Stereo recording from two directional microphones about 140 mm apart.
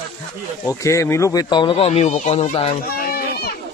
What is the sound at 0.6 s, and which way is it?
Speech, 20° left (ahead or behind).